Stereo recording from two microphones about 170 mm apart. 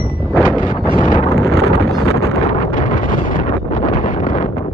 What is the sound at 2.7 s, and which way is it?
Wind noise, 50° left (ahead or behind).